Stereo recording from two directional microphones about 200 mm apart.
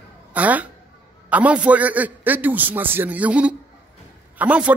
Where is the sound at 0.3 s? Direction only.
10° right (ahead or behind).